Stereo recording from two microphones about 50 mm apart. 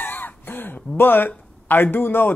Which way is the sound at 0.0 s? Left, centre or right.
Left.